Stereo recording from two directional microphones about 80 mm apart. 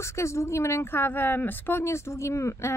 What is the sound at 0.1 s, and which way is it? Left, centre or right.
Speech, left.